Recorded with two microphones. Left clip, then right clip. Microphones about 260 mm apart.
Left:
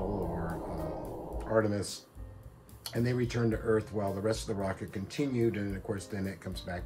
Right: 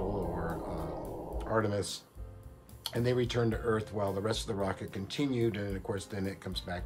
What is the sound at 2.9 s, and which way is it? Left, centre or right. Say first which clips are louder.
Speech: right 2 dB; centre.